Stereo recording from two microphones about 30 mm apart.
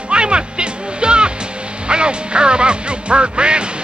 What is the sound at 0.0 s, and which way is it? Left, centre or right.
Music, right.